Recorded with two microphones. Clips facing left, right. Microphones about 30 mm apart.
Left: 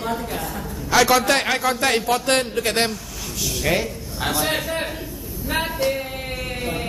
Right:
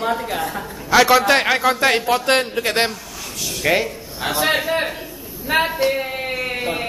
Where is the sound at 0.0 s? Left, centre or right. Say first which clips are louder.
Right 4 dB; right.